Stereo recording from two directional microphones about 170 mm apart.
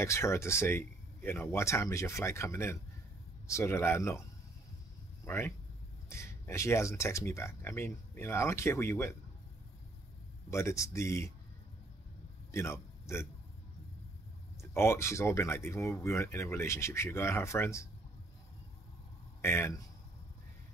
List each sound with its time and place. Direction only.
0.0 s speech: 15° left (ahead or behind)
5.2 s speech: 10° left (ahead or behind)
10.5 s speech: 15° left (ahead or behind)
12.4 s a man's voice: 15° left (ahead or behind)
14.6 s speech: 15° left (ahead or behind)
19.4 s speech: 15° left (ahead or behind)